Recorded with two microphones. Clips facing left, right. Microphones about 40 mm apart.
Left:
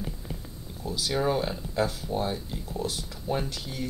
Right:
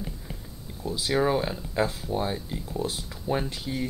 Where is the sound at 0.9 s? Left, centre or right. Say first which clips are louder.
Right 2 dB; centre.